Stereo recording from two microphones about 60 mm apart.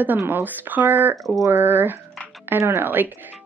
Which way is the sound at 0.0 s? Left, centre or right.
Right.